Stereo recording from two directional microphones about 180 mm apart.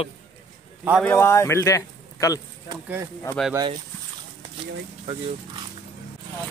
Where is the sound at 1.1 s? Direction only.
15° left (ahead or behind).